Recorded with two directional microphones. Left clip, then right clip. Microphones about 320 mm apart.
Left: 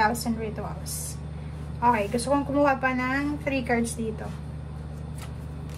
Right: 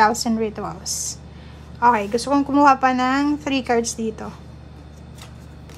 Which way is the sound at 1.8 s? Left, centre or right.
Centre.